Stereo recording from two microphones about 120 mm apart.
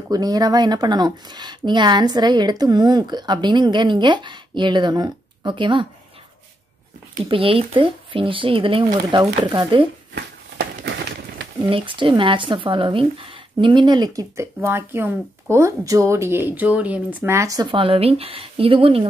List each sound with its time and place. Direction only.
0.1 s speech: 30° right (ahead or behind)
7.2 s speech: 45° right (ahead or behind)
9.4 s speech: 35° right (ahead or behind)
11.6 s speech: 45° right (ahead or behind)
17.7 s speech: 50° right (ahead or behind)